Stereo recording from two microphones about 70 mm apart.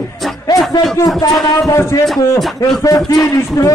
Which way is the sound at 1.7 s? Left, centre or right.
Left.